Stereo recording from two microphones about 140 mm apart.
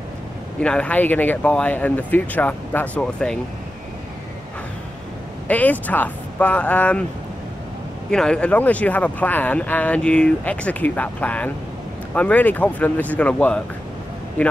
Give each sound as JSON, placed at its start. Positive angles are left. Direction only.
{"t": 0.6, "sound": "speech", "side_deg": 5}
{"t": 5.5, "sound": "speech", "side_deg": 10}
{"t": 8.1, "sound": "speech", "side_deg": 5}